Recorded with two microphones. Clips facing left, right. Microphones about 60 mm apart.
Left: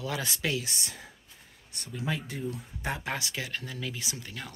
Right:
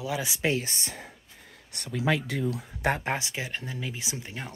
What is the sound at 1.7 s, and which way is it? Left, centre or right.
Speech, right.